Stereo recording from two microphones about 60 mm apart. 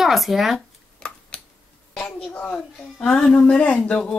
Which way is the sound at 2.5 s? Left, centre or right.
Centre.